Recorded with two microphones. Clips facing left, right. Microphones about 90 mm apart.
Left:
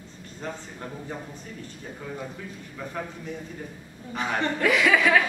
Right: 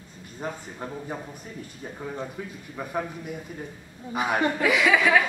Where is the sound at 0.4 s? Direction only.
10° right (ahead or behind).